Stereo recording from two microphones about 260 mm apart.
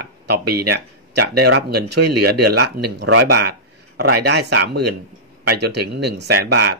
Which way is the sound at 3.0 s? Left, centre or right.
Right.